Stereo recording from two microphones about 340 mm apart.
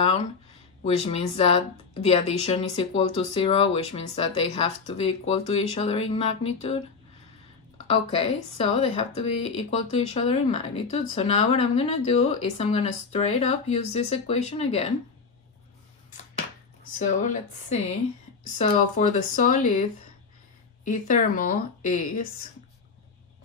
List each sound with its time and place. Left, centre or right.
0.8 s speech: centre
7.9 s speech: centre
17.2 s speech: left